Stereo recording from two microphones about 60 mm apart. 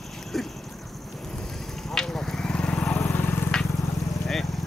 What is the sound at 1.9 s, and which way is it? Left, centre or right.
Vehicle, centre.